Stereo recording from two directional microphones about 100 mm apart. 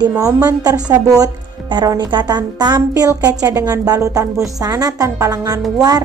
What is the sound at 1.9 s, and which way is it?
Speech, 50° right (ahead or behind).